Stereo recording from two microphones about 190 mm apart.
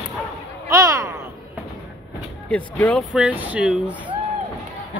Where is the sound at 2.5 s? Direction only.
5° left (ahead or behind).